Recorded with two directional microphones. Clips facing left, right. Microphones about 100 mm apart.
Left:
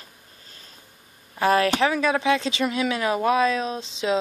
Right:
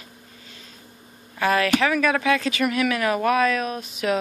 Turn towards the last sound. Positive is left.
turn(degrees=25)  # may be behind; listen again after turning